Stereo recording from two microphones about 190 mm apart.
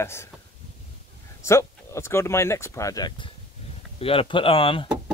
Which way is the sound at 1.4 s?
15° left (ahead or behind).